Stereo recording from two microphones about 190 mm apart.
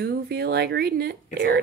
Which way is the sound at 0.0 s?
60° right (ahead or behind).